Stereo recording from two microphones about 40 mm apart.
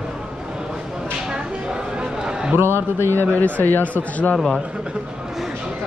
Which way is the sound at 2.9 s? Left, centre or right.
Left.